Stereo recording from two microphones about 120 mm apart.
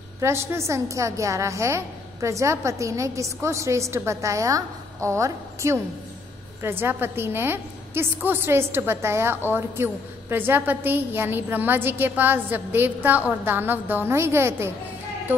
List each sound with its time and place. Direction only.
0.2 s a woman's voice: 20° right (ahead or behind)